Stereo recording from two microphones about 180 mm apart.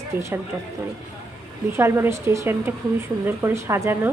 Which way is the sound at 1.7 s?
15° right (ahead or behind).